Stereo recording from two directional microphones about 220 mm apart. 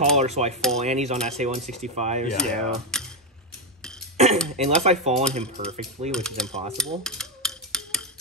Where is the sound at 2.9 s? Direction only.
5° left (ahead or behind).